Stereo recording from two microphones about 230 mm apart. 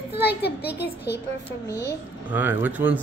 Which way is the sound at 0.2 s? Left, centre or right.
Left.